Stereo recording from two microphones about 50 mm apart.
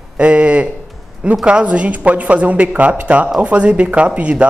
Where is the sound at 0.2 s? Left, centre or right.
Right.